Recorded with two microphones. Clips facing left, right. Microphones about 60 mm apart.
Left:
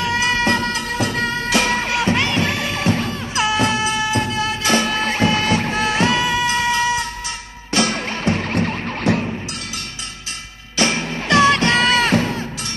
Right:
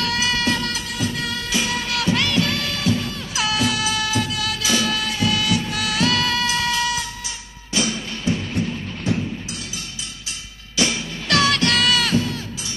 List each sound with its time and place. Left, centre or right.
0.2 s music: left
0.7 s music: left
1.2 s music: left
1.5 s music: left
1.8 s music: left
2.8 s music: left
3.3 s music: left
6.4 s music: left
7.7 s music: left
10.8 s music: left
11.2 s music: left